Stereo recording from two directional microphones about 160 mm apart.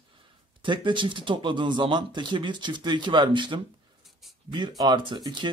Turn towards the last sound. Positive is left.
turn(degrees=-30)  # may be behind; listen again after turning